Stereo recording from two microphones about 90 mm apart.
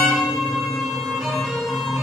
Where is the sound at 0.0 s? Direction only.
Centre (ahead or behind).